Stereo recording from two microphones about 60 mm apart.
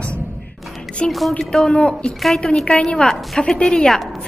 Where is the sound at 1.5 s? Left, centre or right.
Centre.